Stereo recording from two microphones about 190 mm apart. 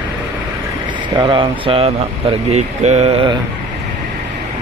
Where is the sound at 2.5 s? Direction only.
35° right (ahead or behind).